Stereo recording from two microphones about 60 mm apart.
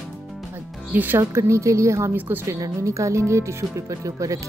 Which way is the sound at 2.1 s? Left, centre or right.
Right.